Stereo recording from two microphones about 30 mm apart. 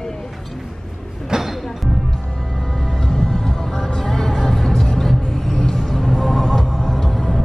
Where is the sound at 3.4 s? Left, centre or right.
Centre.